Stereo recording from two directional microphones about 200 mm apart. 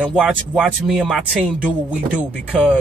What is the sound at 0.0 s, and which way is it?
Speech, centre (ahead or behind).